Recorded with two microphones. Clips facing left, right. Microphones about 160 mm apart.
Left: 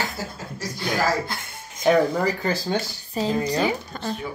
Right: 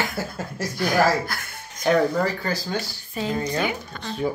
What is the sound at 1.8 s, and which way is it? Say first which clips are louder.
Speech: left 1 dB; 15° left (ahead or behind).